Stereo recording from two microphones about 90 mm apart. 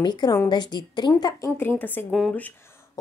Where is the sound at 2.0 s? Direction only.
5° right (ahead or behind).